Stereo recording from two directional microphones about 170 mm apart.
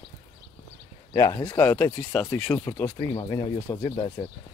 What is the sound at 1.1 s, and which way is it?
Speech, 20° left (ahead or behind).